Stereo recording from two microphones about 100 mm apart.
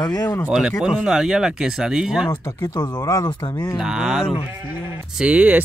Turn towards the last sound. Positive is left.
turn(degrees=-15)  # may be behind; listen again after turning